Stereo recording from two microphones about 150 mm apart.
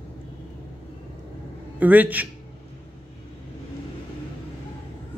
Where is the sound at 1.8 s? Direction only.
10° right (ahead or behind).